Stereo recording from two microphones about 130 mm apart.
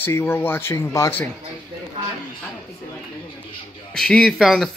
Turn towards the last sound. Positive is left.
turn(degrees=0)  # may be behind; listen again after turning